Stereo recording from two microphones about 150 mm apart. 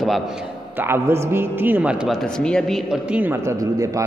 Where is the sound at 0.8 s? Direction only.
15° right (ahead or behind).